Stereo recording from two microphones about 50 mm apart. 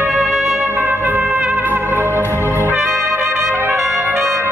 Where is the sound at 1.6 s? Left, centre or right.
Right.